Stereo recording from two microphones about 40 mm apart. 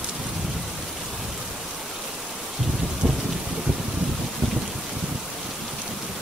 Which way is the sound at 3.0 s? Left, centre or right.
Centre.